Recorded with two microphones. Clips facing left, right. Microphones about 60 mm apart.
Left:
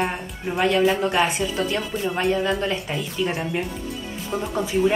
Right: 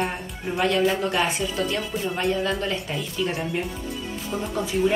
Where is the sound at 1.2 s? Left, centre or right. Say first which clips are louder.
Left 4 dB; left.